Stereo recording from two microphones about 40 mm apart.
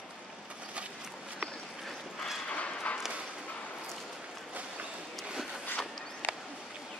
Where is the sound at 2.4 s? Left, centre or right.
Left.